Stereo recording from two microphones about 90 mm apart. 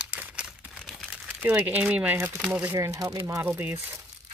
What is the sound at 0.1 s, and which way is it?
Crumpling, 15° right (ahead or behind).